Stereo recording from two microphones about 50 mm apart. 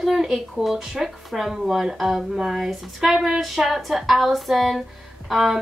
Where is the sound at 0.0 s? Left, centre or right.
Centre.